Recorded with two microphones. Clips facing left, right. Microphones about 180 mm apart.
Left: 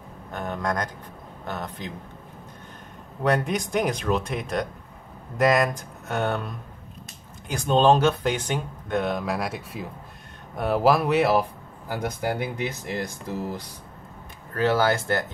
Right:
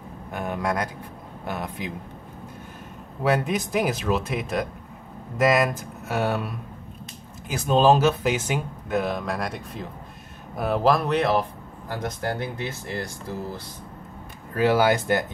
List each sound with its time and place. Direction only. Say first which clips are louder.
0.3 s speech: right 1 dB; 10° right (ahead or behind)
3.2 s speech: even; centre (ahead or behind); by 13.7 s 20° left (ahead or behind)
14.5 s speech: right 2 dB; 10° right (ahead or behind)